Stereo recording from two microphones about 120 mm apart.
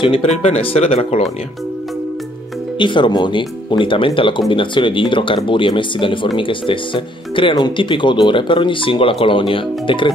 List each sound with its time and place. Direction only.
0.0 s speech: 50° left (ahead or behind)
2.8 s speech: 40° left (ahead or behind)